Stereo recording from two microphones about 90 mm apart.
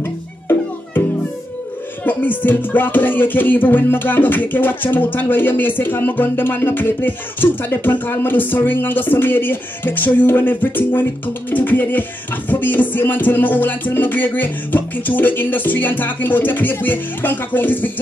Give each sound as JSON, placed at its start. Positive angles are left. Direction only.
{"t": 0.0, "sound": "music", "side_deg": 25}
{"t": 2.0, "sound": "music", "side_deg": 20}